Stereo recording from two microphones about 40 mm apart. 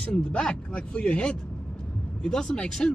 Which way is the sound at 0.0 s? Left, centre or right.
Left.